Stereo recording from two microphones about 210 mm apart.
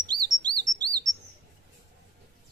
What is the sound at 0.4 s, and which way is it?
Chirp, 20° right (ahead or behind).